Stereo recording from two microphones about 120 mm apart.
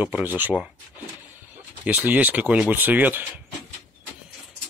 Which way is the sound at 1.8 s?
15° right (ahead or behind).